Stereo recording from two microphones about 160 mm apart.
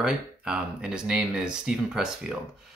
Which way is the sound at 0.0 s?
5° right (ahead or behind).